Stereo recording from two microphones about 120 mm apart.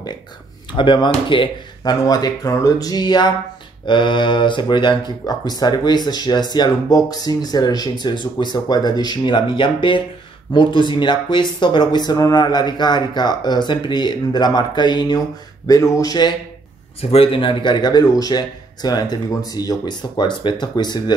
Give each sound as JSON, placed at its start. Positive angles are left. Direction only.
{"t": 0.7, "sound": "speech", "side_deg": 40}
{"t": 2.0, "sound": "speech", "side_deg": 30}
{"t": 17.0, "sound": "speech", "side_deg": 55}